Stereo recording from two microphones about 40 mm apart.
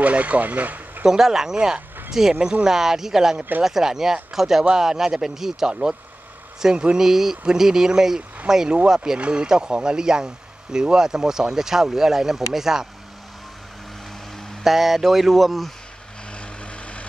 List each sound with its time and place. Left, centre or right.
0.0 s speech: right
1.0 s speech: centre
5.7 s speech: right
7.0 s speech: centre
14.6 s speech: centre
16.3 s vehicle: left